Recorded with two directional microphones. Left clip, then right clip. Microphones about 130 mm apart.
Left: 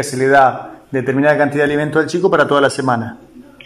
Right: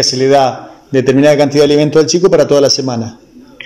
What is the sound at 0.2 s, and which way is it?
A man's voice, 30° right (ahead or behind).